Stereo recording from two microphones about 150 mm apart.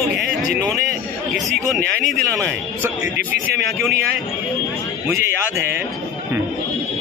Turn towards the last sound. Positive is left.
turn(degrees=-15)  # may be behind; listen again after turning